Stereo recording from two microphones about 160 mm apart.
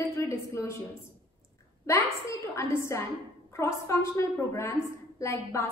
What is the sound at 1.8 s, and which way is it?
A woman's voice, 15° left (ahead or behind).